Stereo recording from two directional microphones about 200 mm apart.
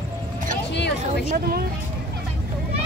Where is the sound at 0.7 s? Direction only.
60° left (ahead or behind).